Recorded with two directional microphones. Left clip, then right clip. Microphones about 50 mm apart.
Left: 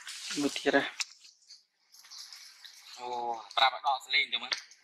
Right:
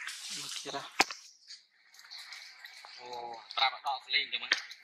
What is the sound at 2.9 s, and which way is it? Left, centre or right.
Speech, left.